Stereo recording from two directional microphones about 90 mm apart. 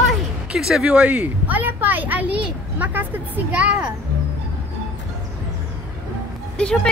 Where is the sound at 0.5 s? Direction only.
5° right (ahead or behind).